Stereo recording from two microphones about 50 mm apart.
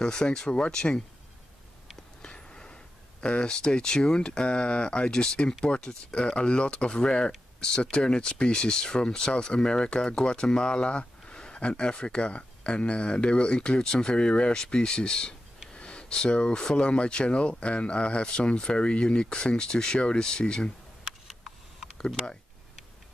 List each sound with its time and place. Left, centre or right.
0.0 s speech: centre
2.2 s speech: centre
21.3 s a sound: centre
21.9 s speech: centre